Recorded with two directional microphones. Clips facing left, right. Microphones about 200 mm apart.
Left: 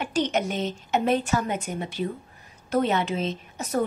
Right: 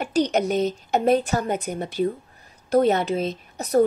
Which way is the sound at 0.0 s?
40° right (ahead or behind).